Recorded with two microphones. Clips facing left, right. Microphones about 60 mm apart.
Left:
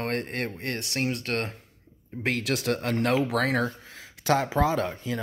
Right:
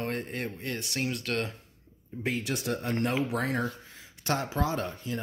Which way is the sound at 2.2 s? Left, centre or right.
Left.